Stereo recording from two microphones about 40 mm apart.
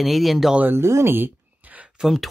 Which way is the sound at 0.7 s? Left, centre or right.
Right.